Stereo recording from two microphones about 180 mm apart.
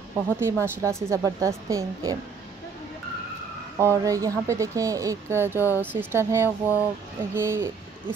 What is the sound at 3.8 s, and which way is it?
Speech, 15° right (ahead or behind).